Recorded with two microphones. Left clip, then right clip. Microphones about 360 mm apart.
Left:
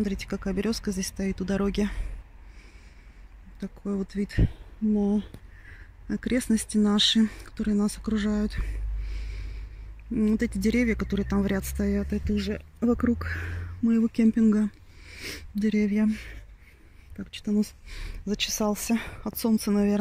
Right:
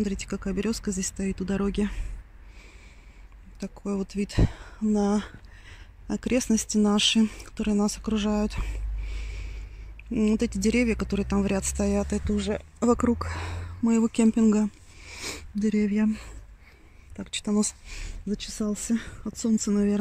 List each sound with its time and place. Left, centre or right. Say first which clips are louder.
0.0 s speech: even; centre
3.6 s speech: right 1 dB; centre
4.4 s speech: right 2 dB; right
5.7 s speech: right 1 dB; centre
10.1 s speech: right 1 dB; centre
18.2 s speech: left 6 dB; centre